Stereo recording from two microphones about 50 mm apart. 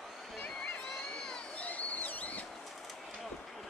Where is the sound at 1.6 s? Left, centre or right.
Left.